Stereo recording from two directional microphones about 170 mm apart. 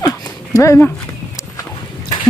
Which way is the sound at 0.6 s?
15° left (ahead or behind).